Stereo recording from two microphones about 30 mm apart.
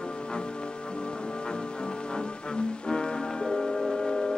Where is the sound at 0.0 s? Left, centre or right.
Left.